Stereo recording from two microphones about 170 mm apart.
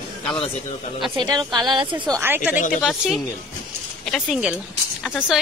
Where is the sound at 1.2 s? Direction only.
25° right (ahead or behind).